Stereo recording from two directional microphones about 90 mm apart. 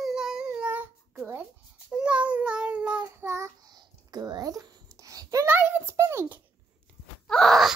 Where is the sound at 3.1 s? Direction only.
30° right (ahead or behind).